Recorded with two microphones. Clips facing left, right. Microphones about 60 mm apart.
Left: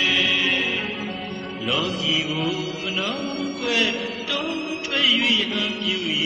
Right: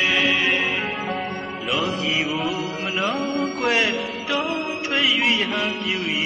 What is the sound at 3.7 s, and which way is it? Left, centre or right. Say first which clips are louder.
Music: right 2 dB; right.